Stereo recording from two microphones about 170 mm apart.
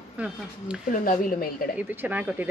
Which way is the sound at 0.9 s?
55° left (ahead or behind).